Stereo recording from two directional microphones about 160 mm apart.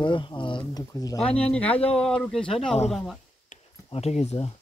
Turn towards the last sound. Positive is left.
turn(degrees=40)  # may be behind; listen again after turning